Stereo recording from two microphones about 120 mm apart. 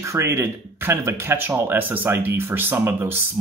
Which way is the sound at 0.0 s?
25° right (ahead or behind).